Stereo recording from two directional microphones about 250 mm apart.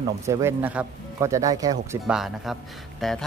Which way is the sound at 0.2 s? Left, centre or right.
Centre.